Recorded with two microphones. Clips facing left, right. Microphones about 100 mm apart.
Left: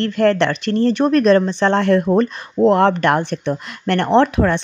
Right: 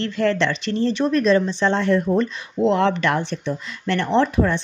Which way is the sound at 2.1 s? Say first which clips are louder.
Left 4 dB; 45° left (ahead or behind).